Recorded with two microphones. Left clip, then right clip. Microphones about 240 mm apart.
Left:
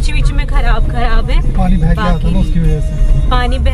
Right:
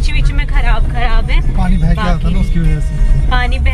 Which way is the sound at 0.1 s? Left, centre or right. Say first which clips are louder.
Even; centre.